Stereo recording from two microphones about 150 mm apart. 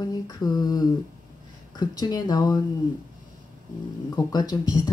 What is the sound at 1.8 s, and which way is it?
Speech, 25° left (ahead or behind).